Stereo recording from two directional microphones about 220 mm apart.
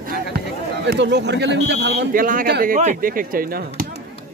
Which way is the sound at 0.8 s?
50° right (ahead or behind).